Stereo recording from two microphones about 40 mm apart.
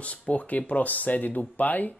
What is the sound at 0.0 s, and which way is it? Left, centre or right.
Speech, left.